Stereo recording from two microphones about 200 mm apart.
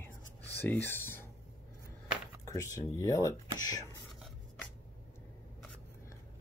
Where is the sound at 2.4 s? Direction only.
15° left (ahead or behind).